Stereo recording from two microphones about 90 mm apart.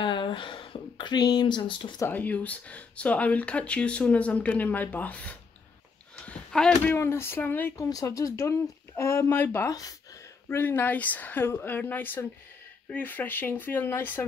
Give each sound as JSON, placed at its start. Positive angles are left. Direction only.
{"t": 0.0, "sound": "speech", "side_deg": 65}
{"t": 2.0, "sound": "speech", "side_deg": 20}
{"t": 6.2, "sound": "a sound", "side_deg": 10}
{"t": 6.9, "sound": "speech", "side_deg": 30}
{"t": 7.7, "sound": "speech", "side_deg": 40}
{"t": 9.7, "sound": "speech", "side_deg": 40}
{"t": 10.5, "sound": "speech", "side_deg": 20}